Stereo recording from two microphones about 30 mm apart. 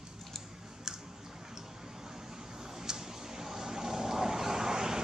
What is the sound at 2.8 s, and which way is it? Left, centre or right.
Vehicle, centre.